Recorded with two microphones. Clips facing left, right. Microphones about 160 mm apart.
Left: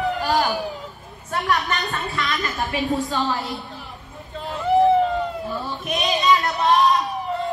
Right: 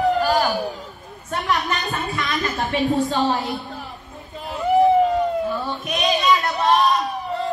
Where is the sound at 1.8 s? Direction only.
20° right (ahead or behind).